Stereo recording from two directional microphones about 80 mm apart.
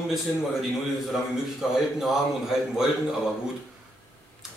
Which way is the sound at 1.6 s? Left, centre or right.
Centre.